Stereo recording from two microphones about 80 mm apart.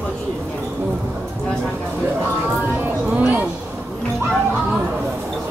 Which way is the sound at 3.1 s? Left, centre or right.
Right.